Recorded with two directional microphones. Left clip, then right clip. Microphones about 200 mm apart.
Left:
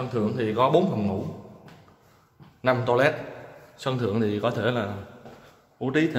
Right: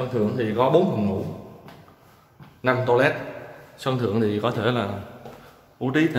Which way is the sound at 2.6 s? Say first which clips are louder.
Right 2 dB; 15° left (ahead or behind).